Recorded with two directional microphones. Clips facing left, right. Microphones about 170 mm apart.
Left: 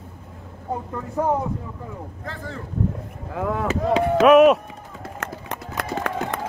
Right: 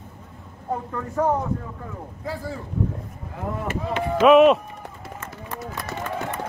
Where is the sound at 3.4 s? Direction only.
90° left.